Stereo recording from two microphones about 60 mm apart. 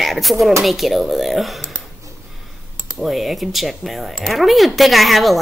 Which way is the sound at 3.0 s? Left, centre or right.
Centre.